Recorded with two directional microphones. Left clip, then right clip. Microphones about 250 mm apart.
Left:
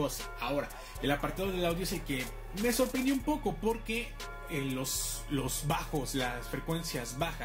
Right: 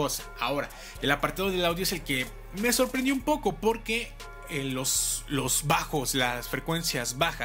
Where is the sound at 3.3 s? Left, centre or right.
Centre.